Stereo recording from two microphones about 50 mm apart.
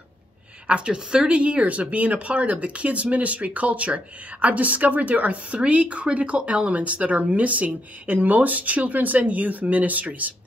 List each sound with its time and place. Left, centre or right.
0.7 s speech: centre